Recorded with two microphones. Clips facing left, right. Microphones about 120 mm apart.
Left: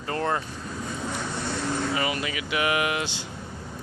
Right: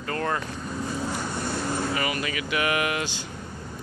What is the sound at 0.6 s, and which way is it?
Vehicle, 5° right (ahead or behind).